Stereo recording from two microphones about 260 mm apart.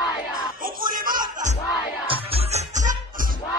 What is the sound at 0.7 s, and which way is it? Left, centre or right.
Snicker, right.